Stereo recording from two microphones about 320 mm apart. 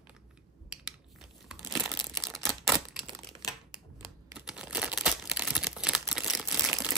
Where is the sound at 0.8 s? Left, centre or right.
Centre.